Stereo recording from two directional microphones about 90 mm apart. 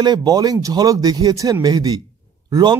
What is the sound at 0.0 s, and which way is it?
Speech, 50° right (ahead or behind).